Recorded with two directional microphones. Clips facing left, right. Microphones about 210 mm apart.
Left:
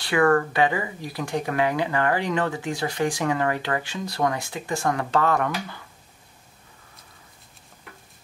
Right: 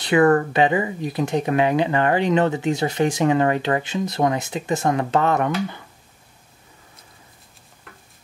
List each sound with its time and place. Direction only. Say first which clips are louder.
0.0 s speech: right 4 dB; 20° right (ahead or behind)